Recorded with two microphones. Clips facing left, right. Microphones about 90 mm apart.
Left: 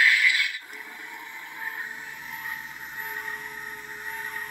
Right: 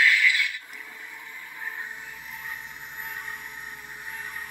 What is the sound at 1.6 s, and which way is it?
Train, 5° left (ahead or behind).